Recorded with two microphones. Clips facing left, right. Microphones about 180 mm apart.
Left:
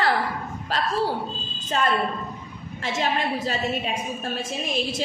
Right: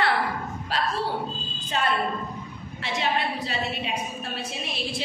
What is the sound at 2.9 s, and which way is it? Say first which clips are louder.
A woman's voice: left 1 dB; 45° left (ahead or behind).